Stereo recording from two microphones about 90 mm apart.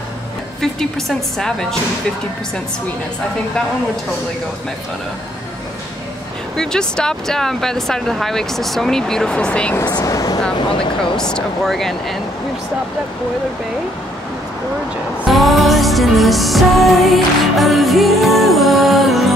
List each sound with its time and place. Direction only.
0.6 s music: 5° left (ahead or behind)
6.5 s music: 5° left (ahead or behind)
10.0 s speech: 40° left (ahead or behind)
11.1 s music: 5° left (ahead or behind)
15.2 s music: centre (ahead or behind)